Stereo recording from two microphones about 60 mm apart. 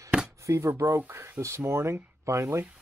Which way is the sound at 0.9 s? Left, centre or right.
Right.